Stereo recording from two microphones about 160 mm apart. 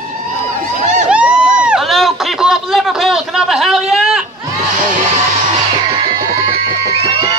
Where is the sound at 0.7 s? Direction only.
45° right (ahead or behind).